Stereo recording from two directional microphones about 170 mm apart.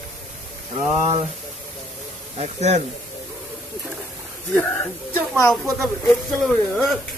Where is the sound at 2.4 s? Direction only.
40° right (ahead or behind).